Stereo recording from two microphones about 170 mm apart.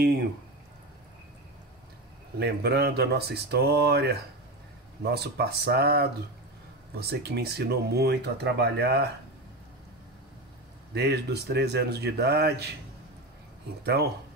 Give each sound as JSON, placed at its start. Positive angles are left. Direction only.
{"t": 2.3, "sound": "speech", "side_deg": -70}
{"t": 11.0, "sound": "speech", "side_deg": -75}